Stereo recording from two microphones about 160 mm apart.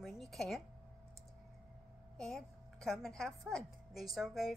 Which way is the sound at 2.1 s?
5° left (ahead or behind).